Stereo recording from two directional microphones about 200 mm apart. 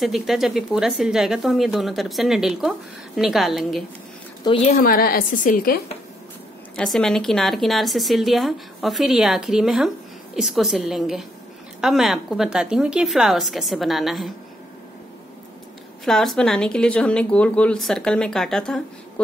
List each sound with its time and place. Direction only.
0.0 s speech: centre (ahead or behind)
4.7 s a woman's voice: 45° left (ahead or behind)
6.8 s speech: 5° left (ahead or behind)
16.1 s speech: centre (ahead or behind)